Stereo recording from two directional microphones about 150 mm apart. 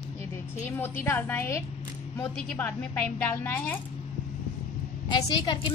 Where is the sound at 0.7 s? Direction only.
15° left (ahead or behind).